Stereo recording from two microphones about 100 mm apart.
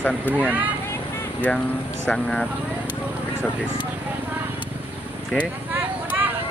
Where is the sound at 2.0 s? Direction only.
10° left (ahead or behind).